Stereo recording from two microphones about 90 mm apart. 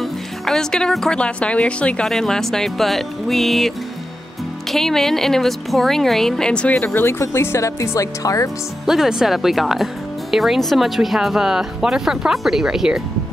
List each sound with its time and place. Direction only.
0.0 s speech: 5° left (ahead or behind)
6.9 s speech: 25° left (ahead or behind)
8.8 s speech: 5° right (ahead or behind)